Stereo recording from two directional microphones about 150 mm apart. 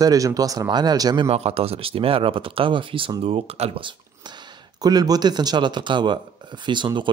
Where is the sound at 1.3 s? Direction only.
40° right (ahead or behind).